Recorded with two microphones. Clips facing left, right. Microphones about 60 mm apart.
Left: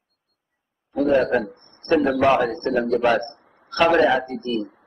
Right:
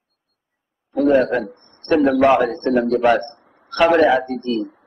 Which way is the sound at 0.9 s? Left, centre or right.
Centre.